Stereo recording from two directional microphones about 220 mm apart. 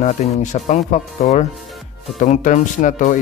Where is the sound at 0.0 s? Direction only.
35° left (ahead or behind).